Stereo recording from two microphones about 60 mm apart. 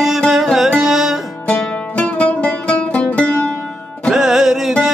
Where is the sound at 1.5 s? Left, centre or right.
Left.